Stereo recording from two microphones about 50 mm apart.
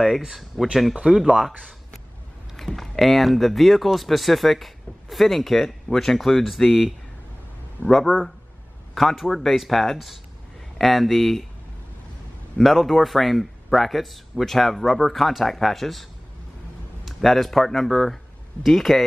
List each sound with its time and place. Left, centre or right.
0.0 s speech: centre
1.0 s speech: centre
2.5 s speech: centre
7.8 s speech: right
8.9 s speech: centre
12.5 s speech: centre
17.2 s speech: centre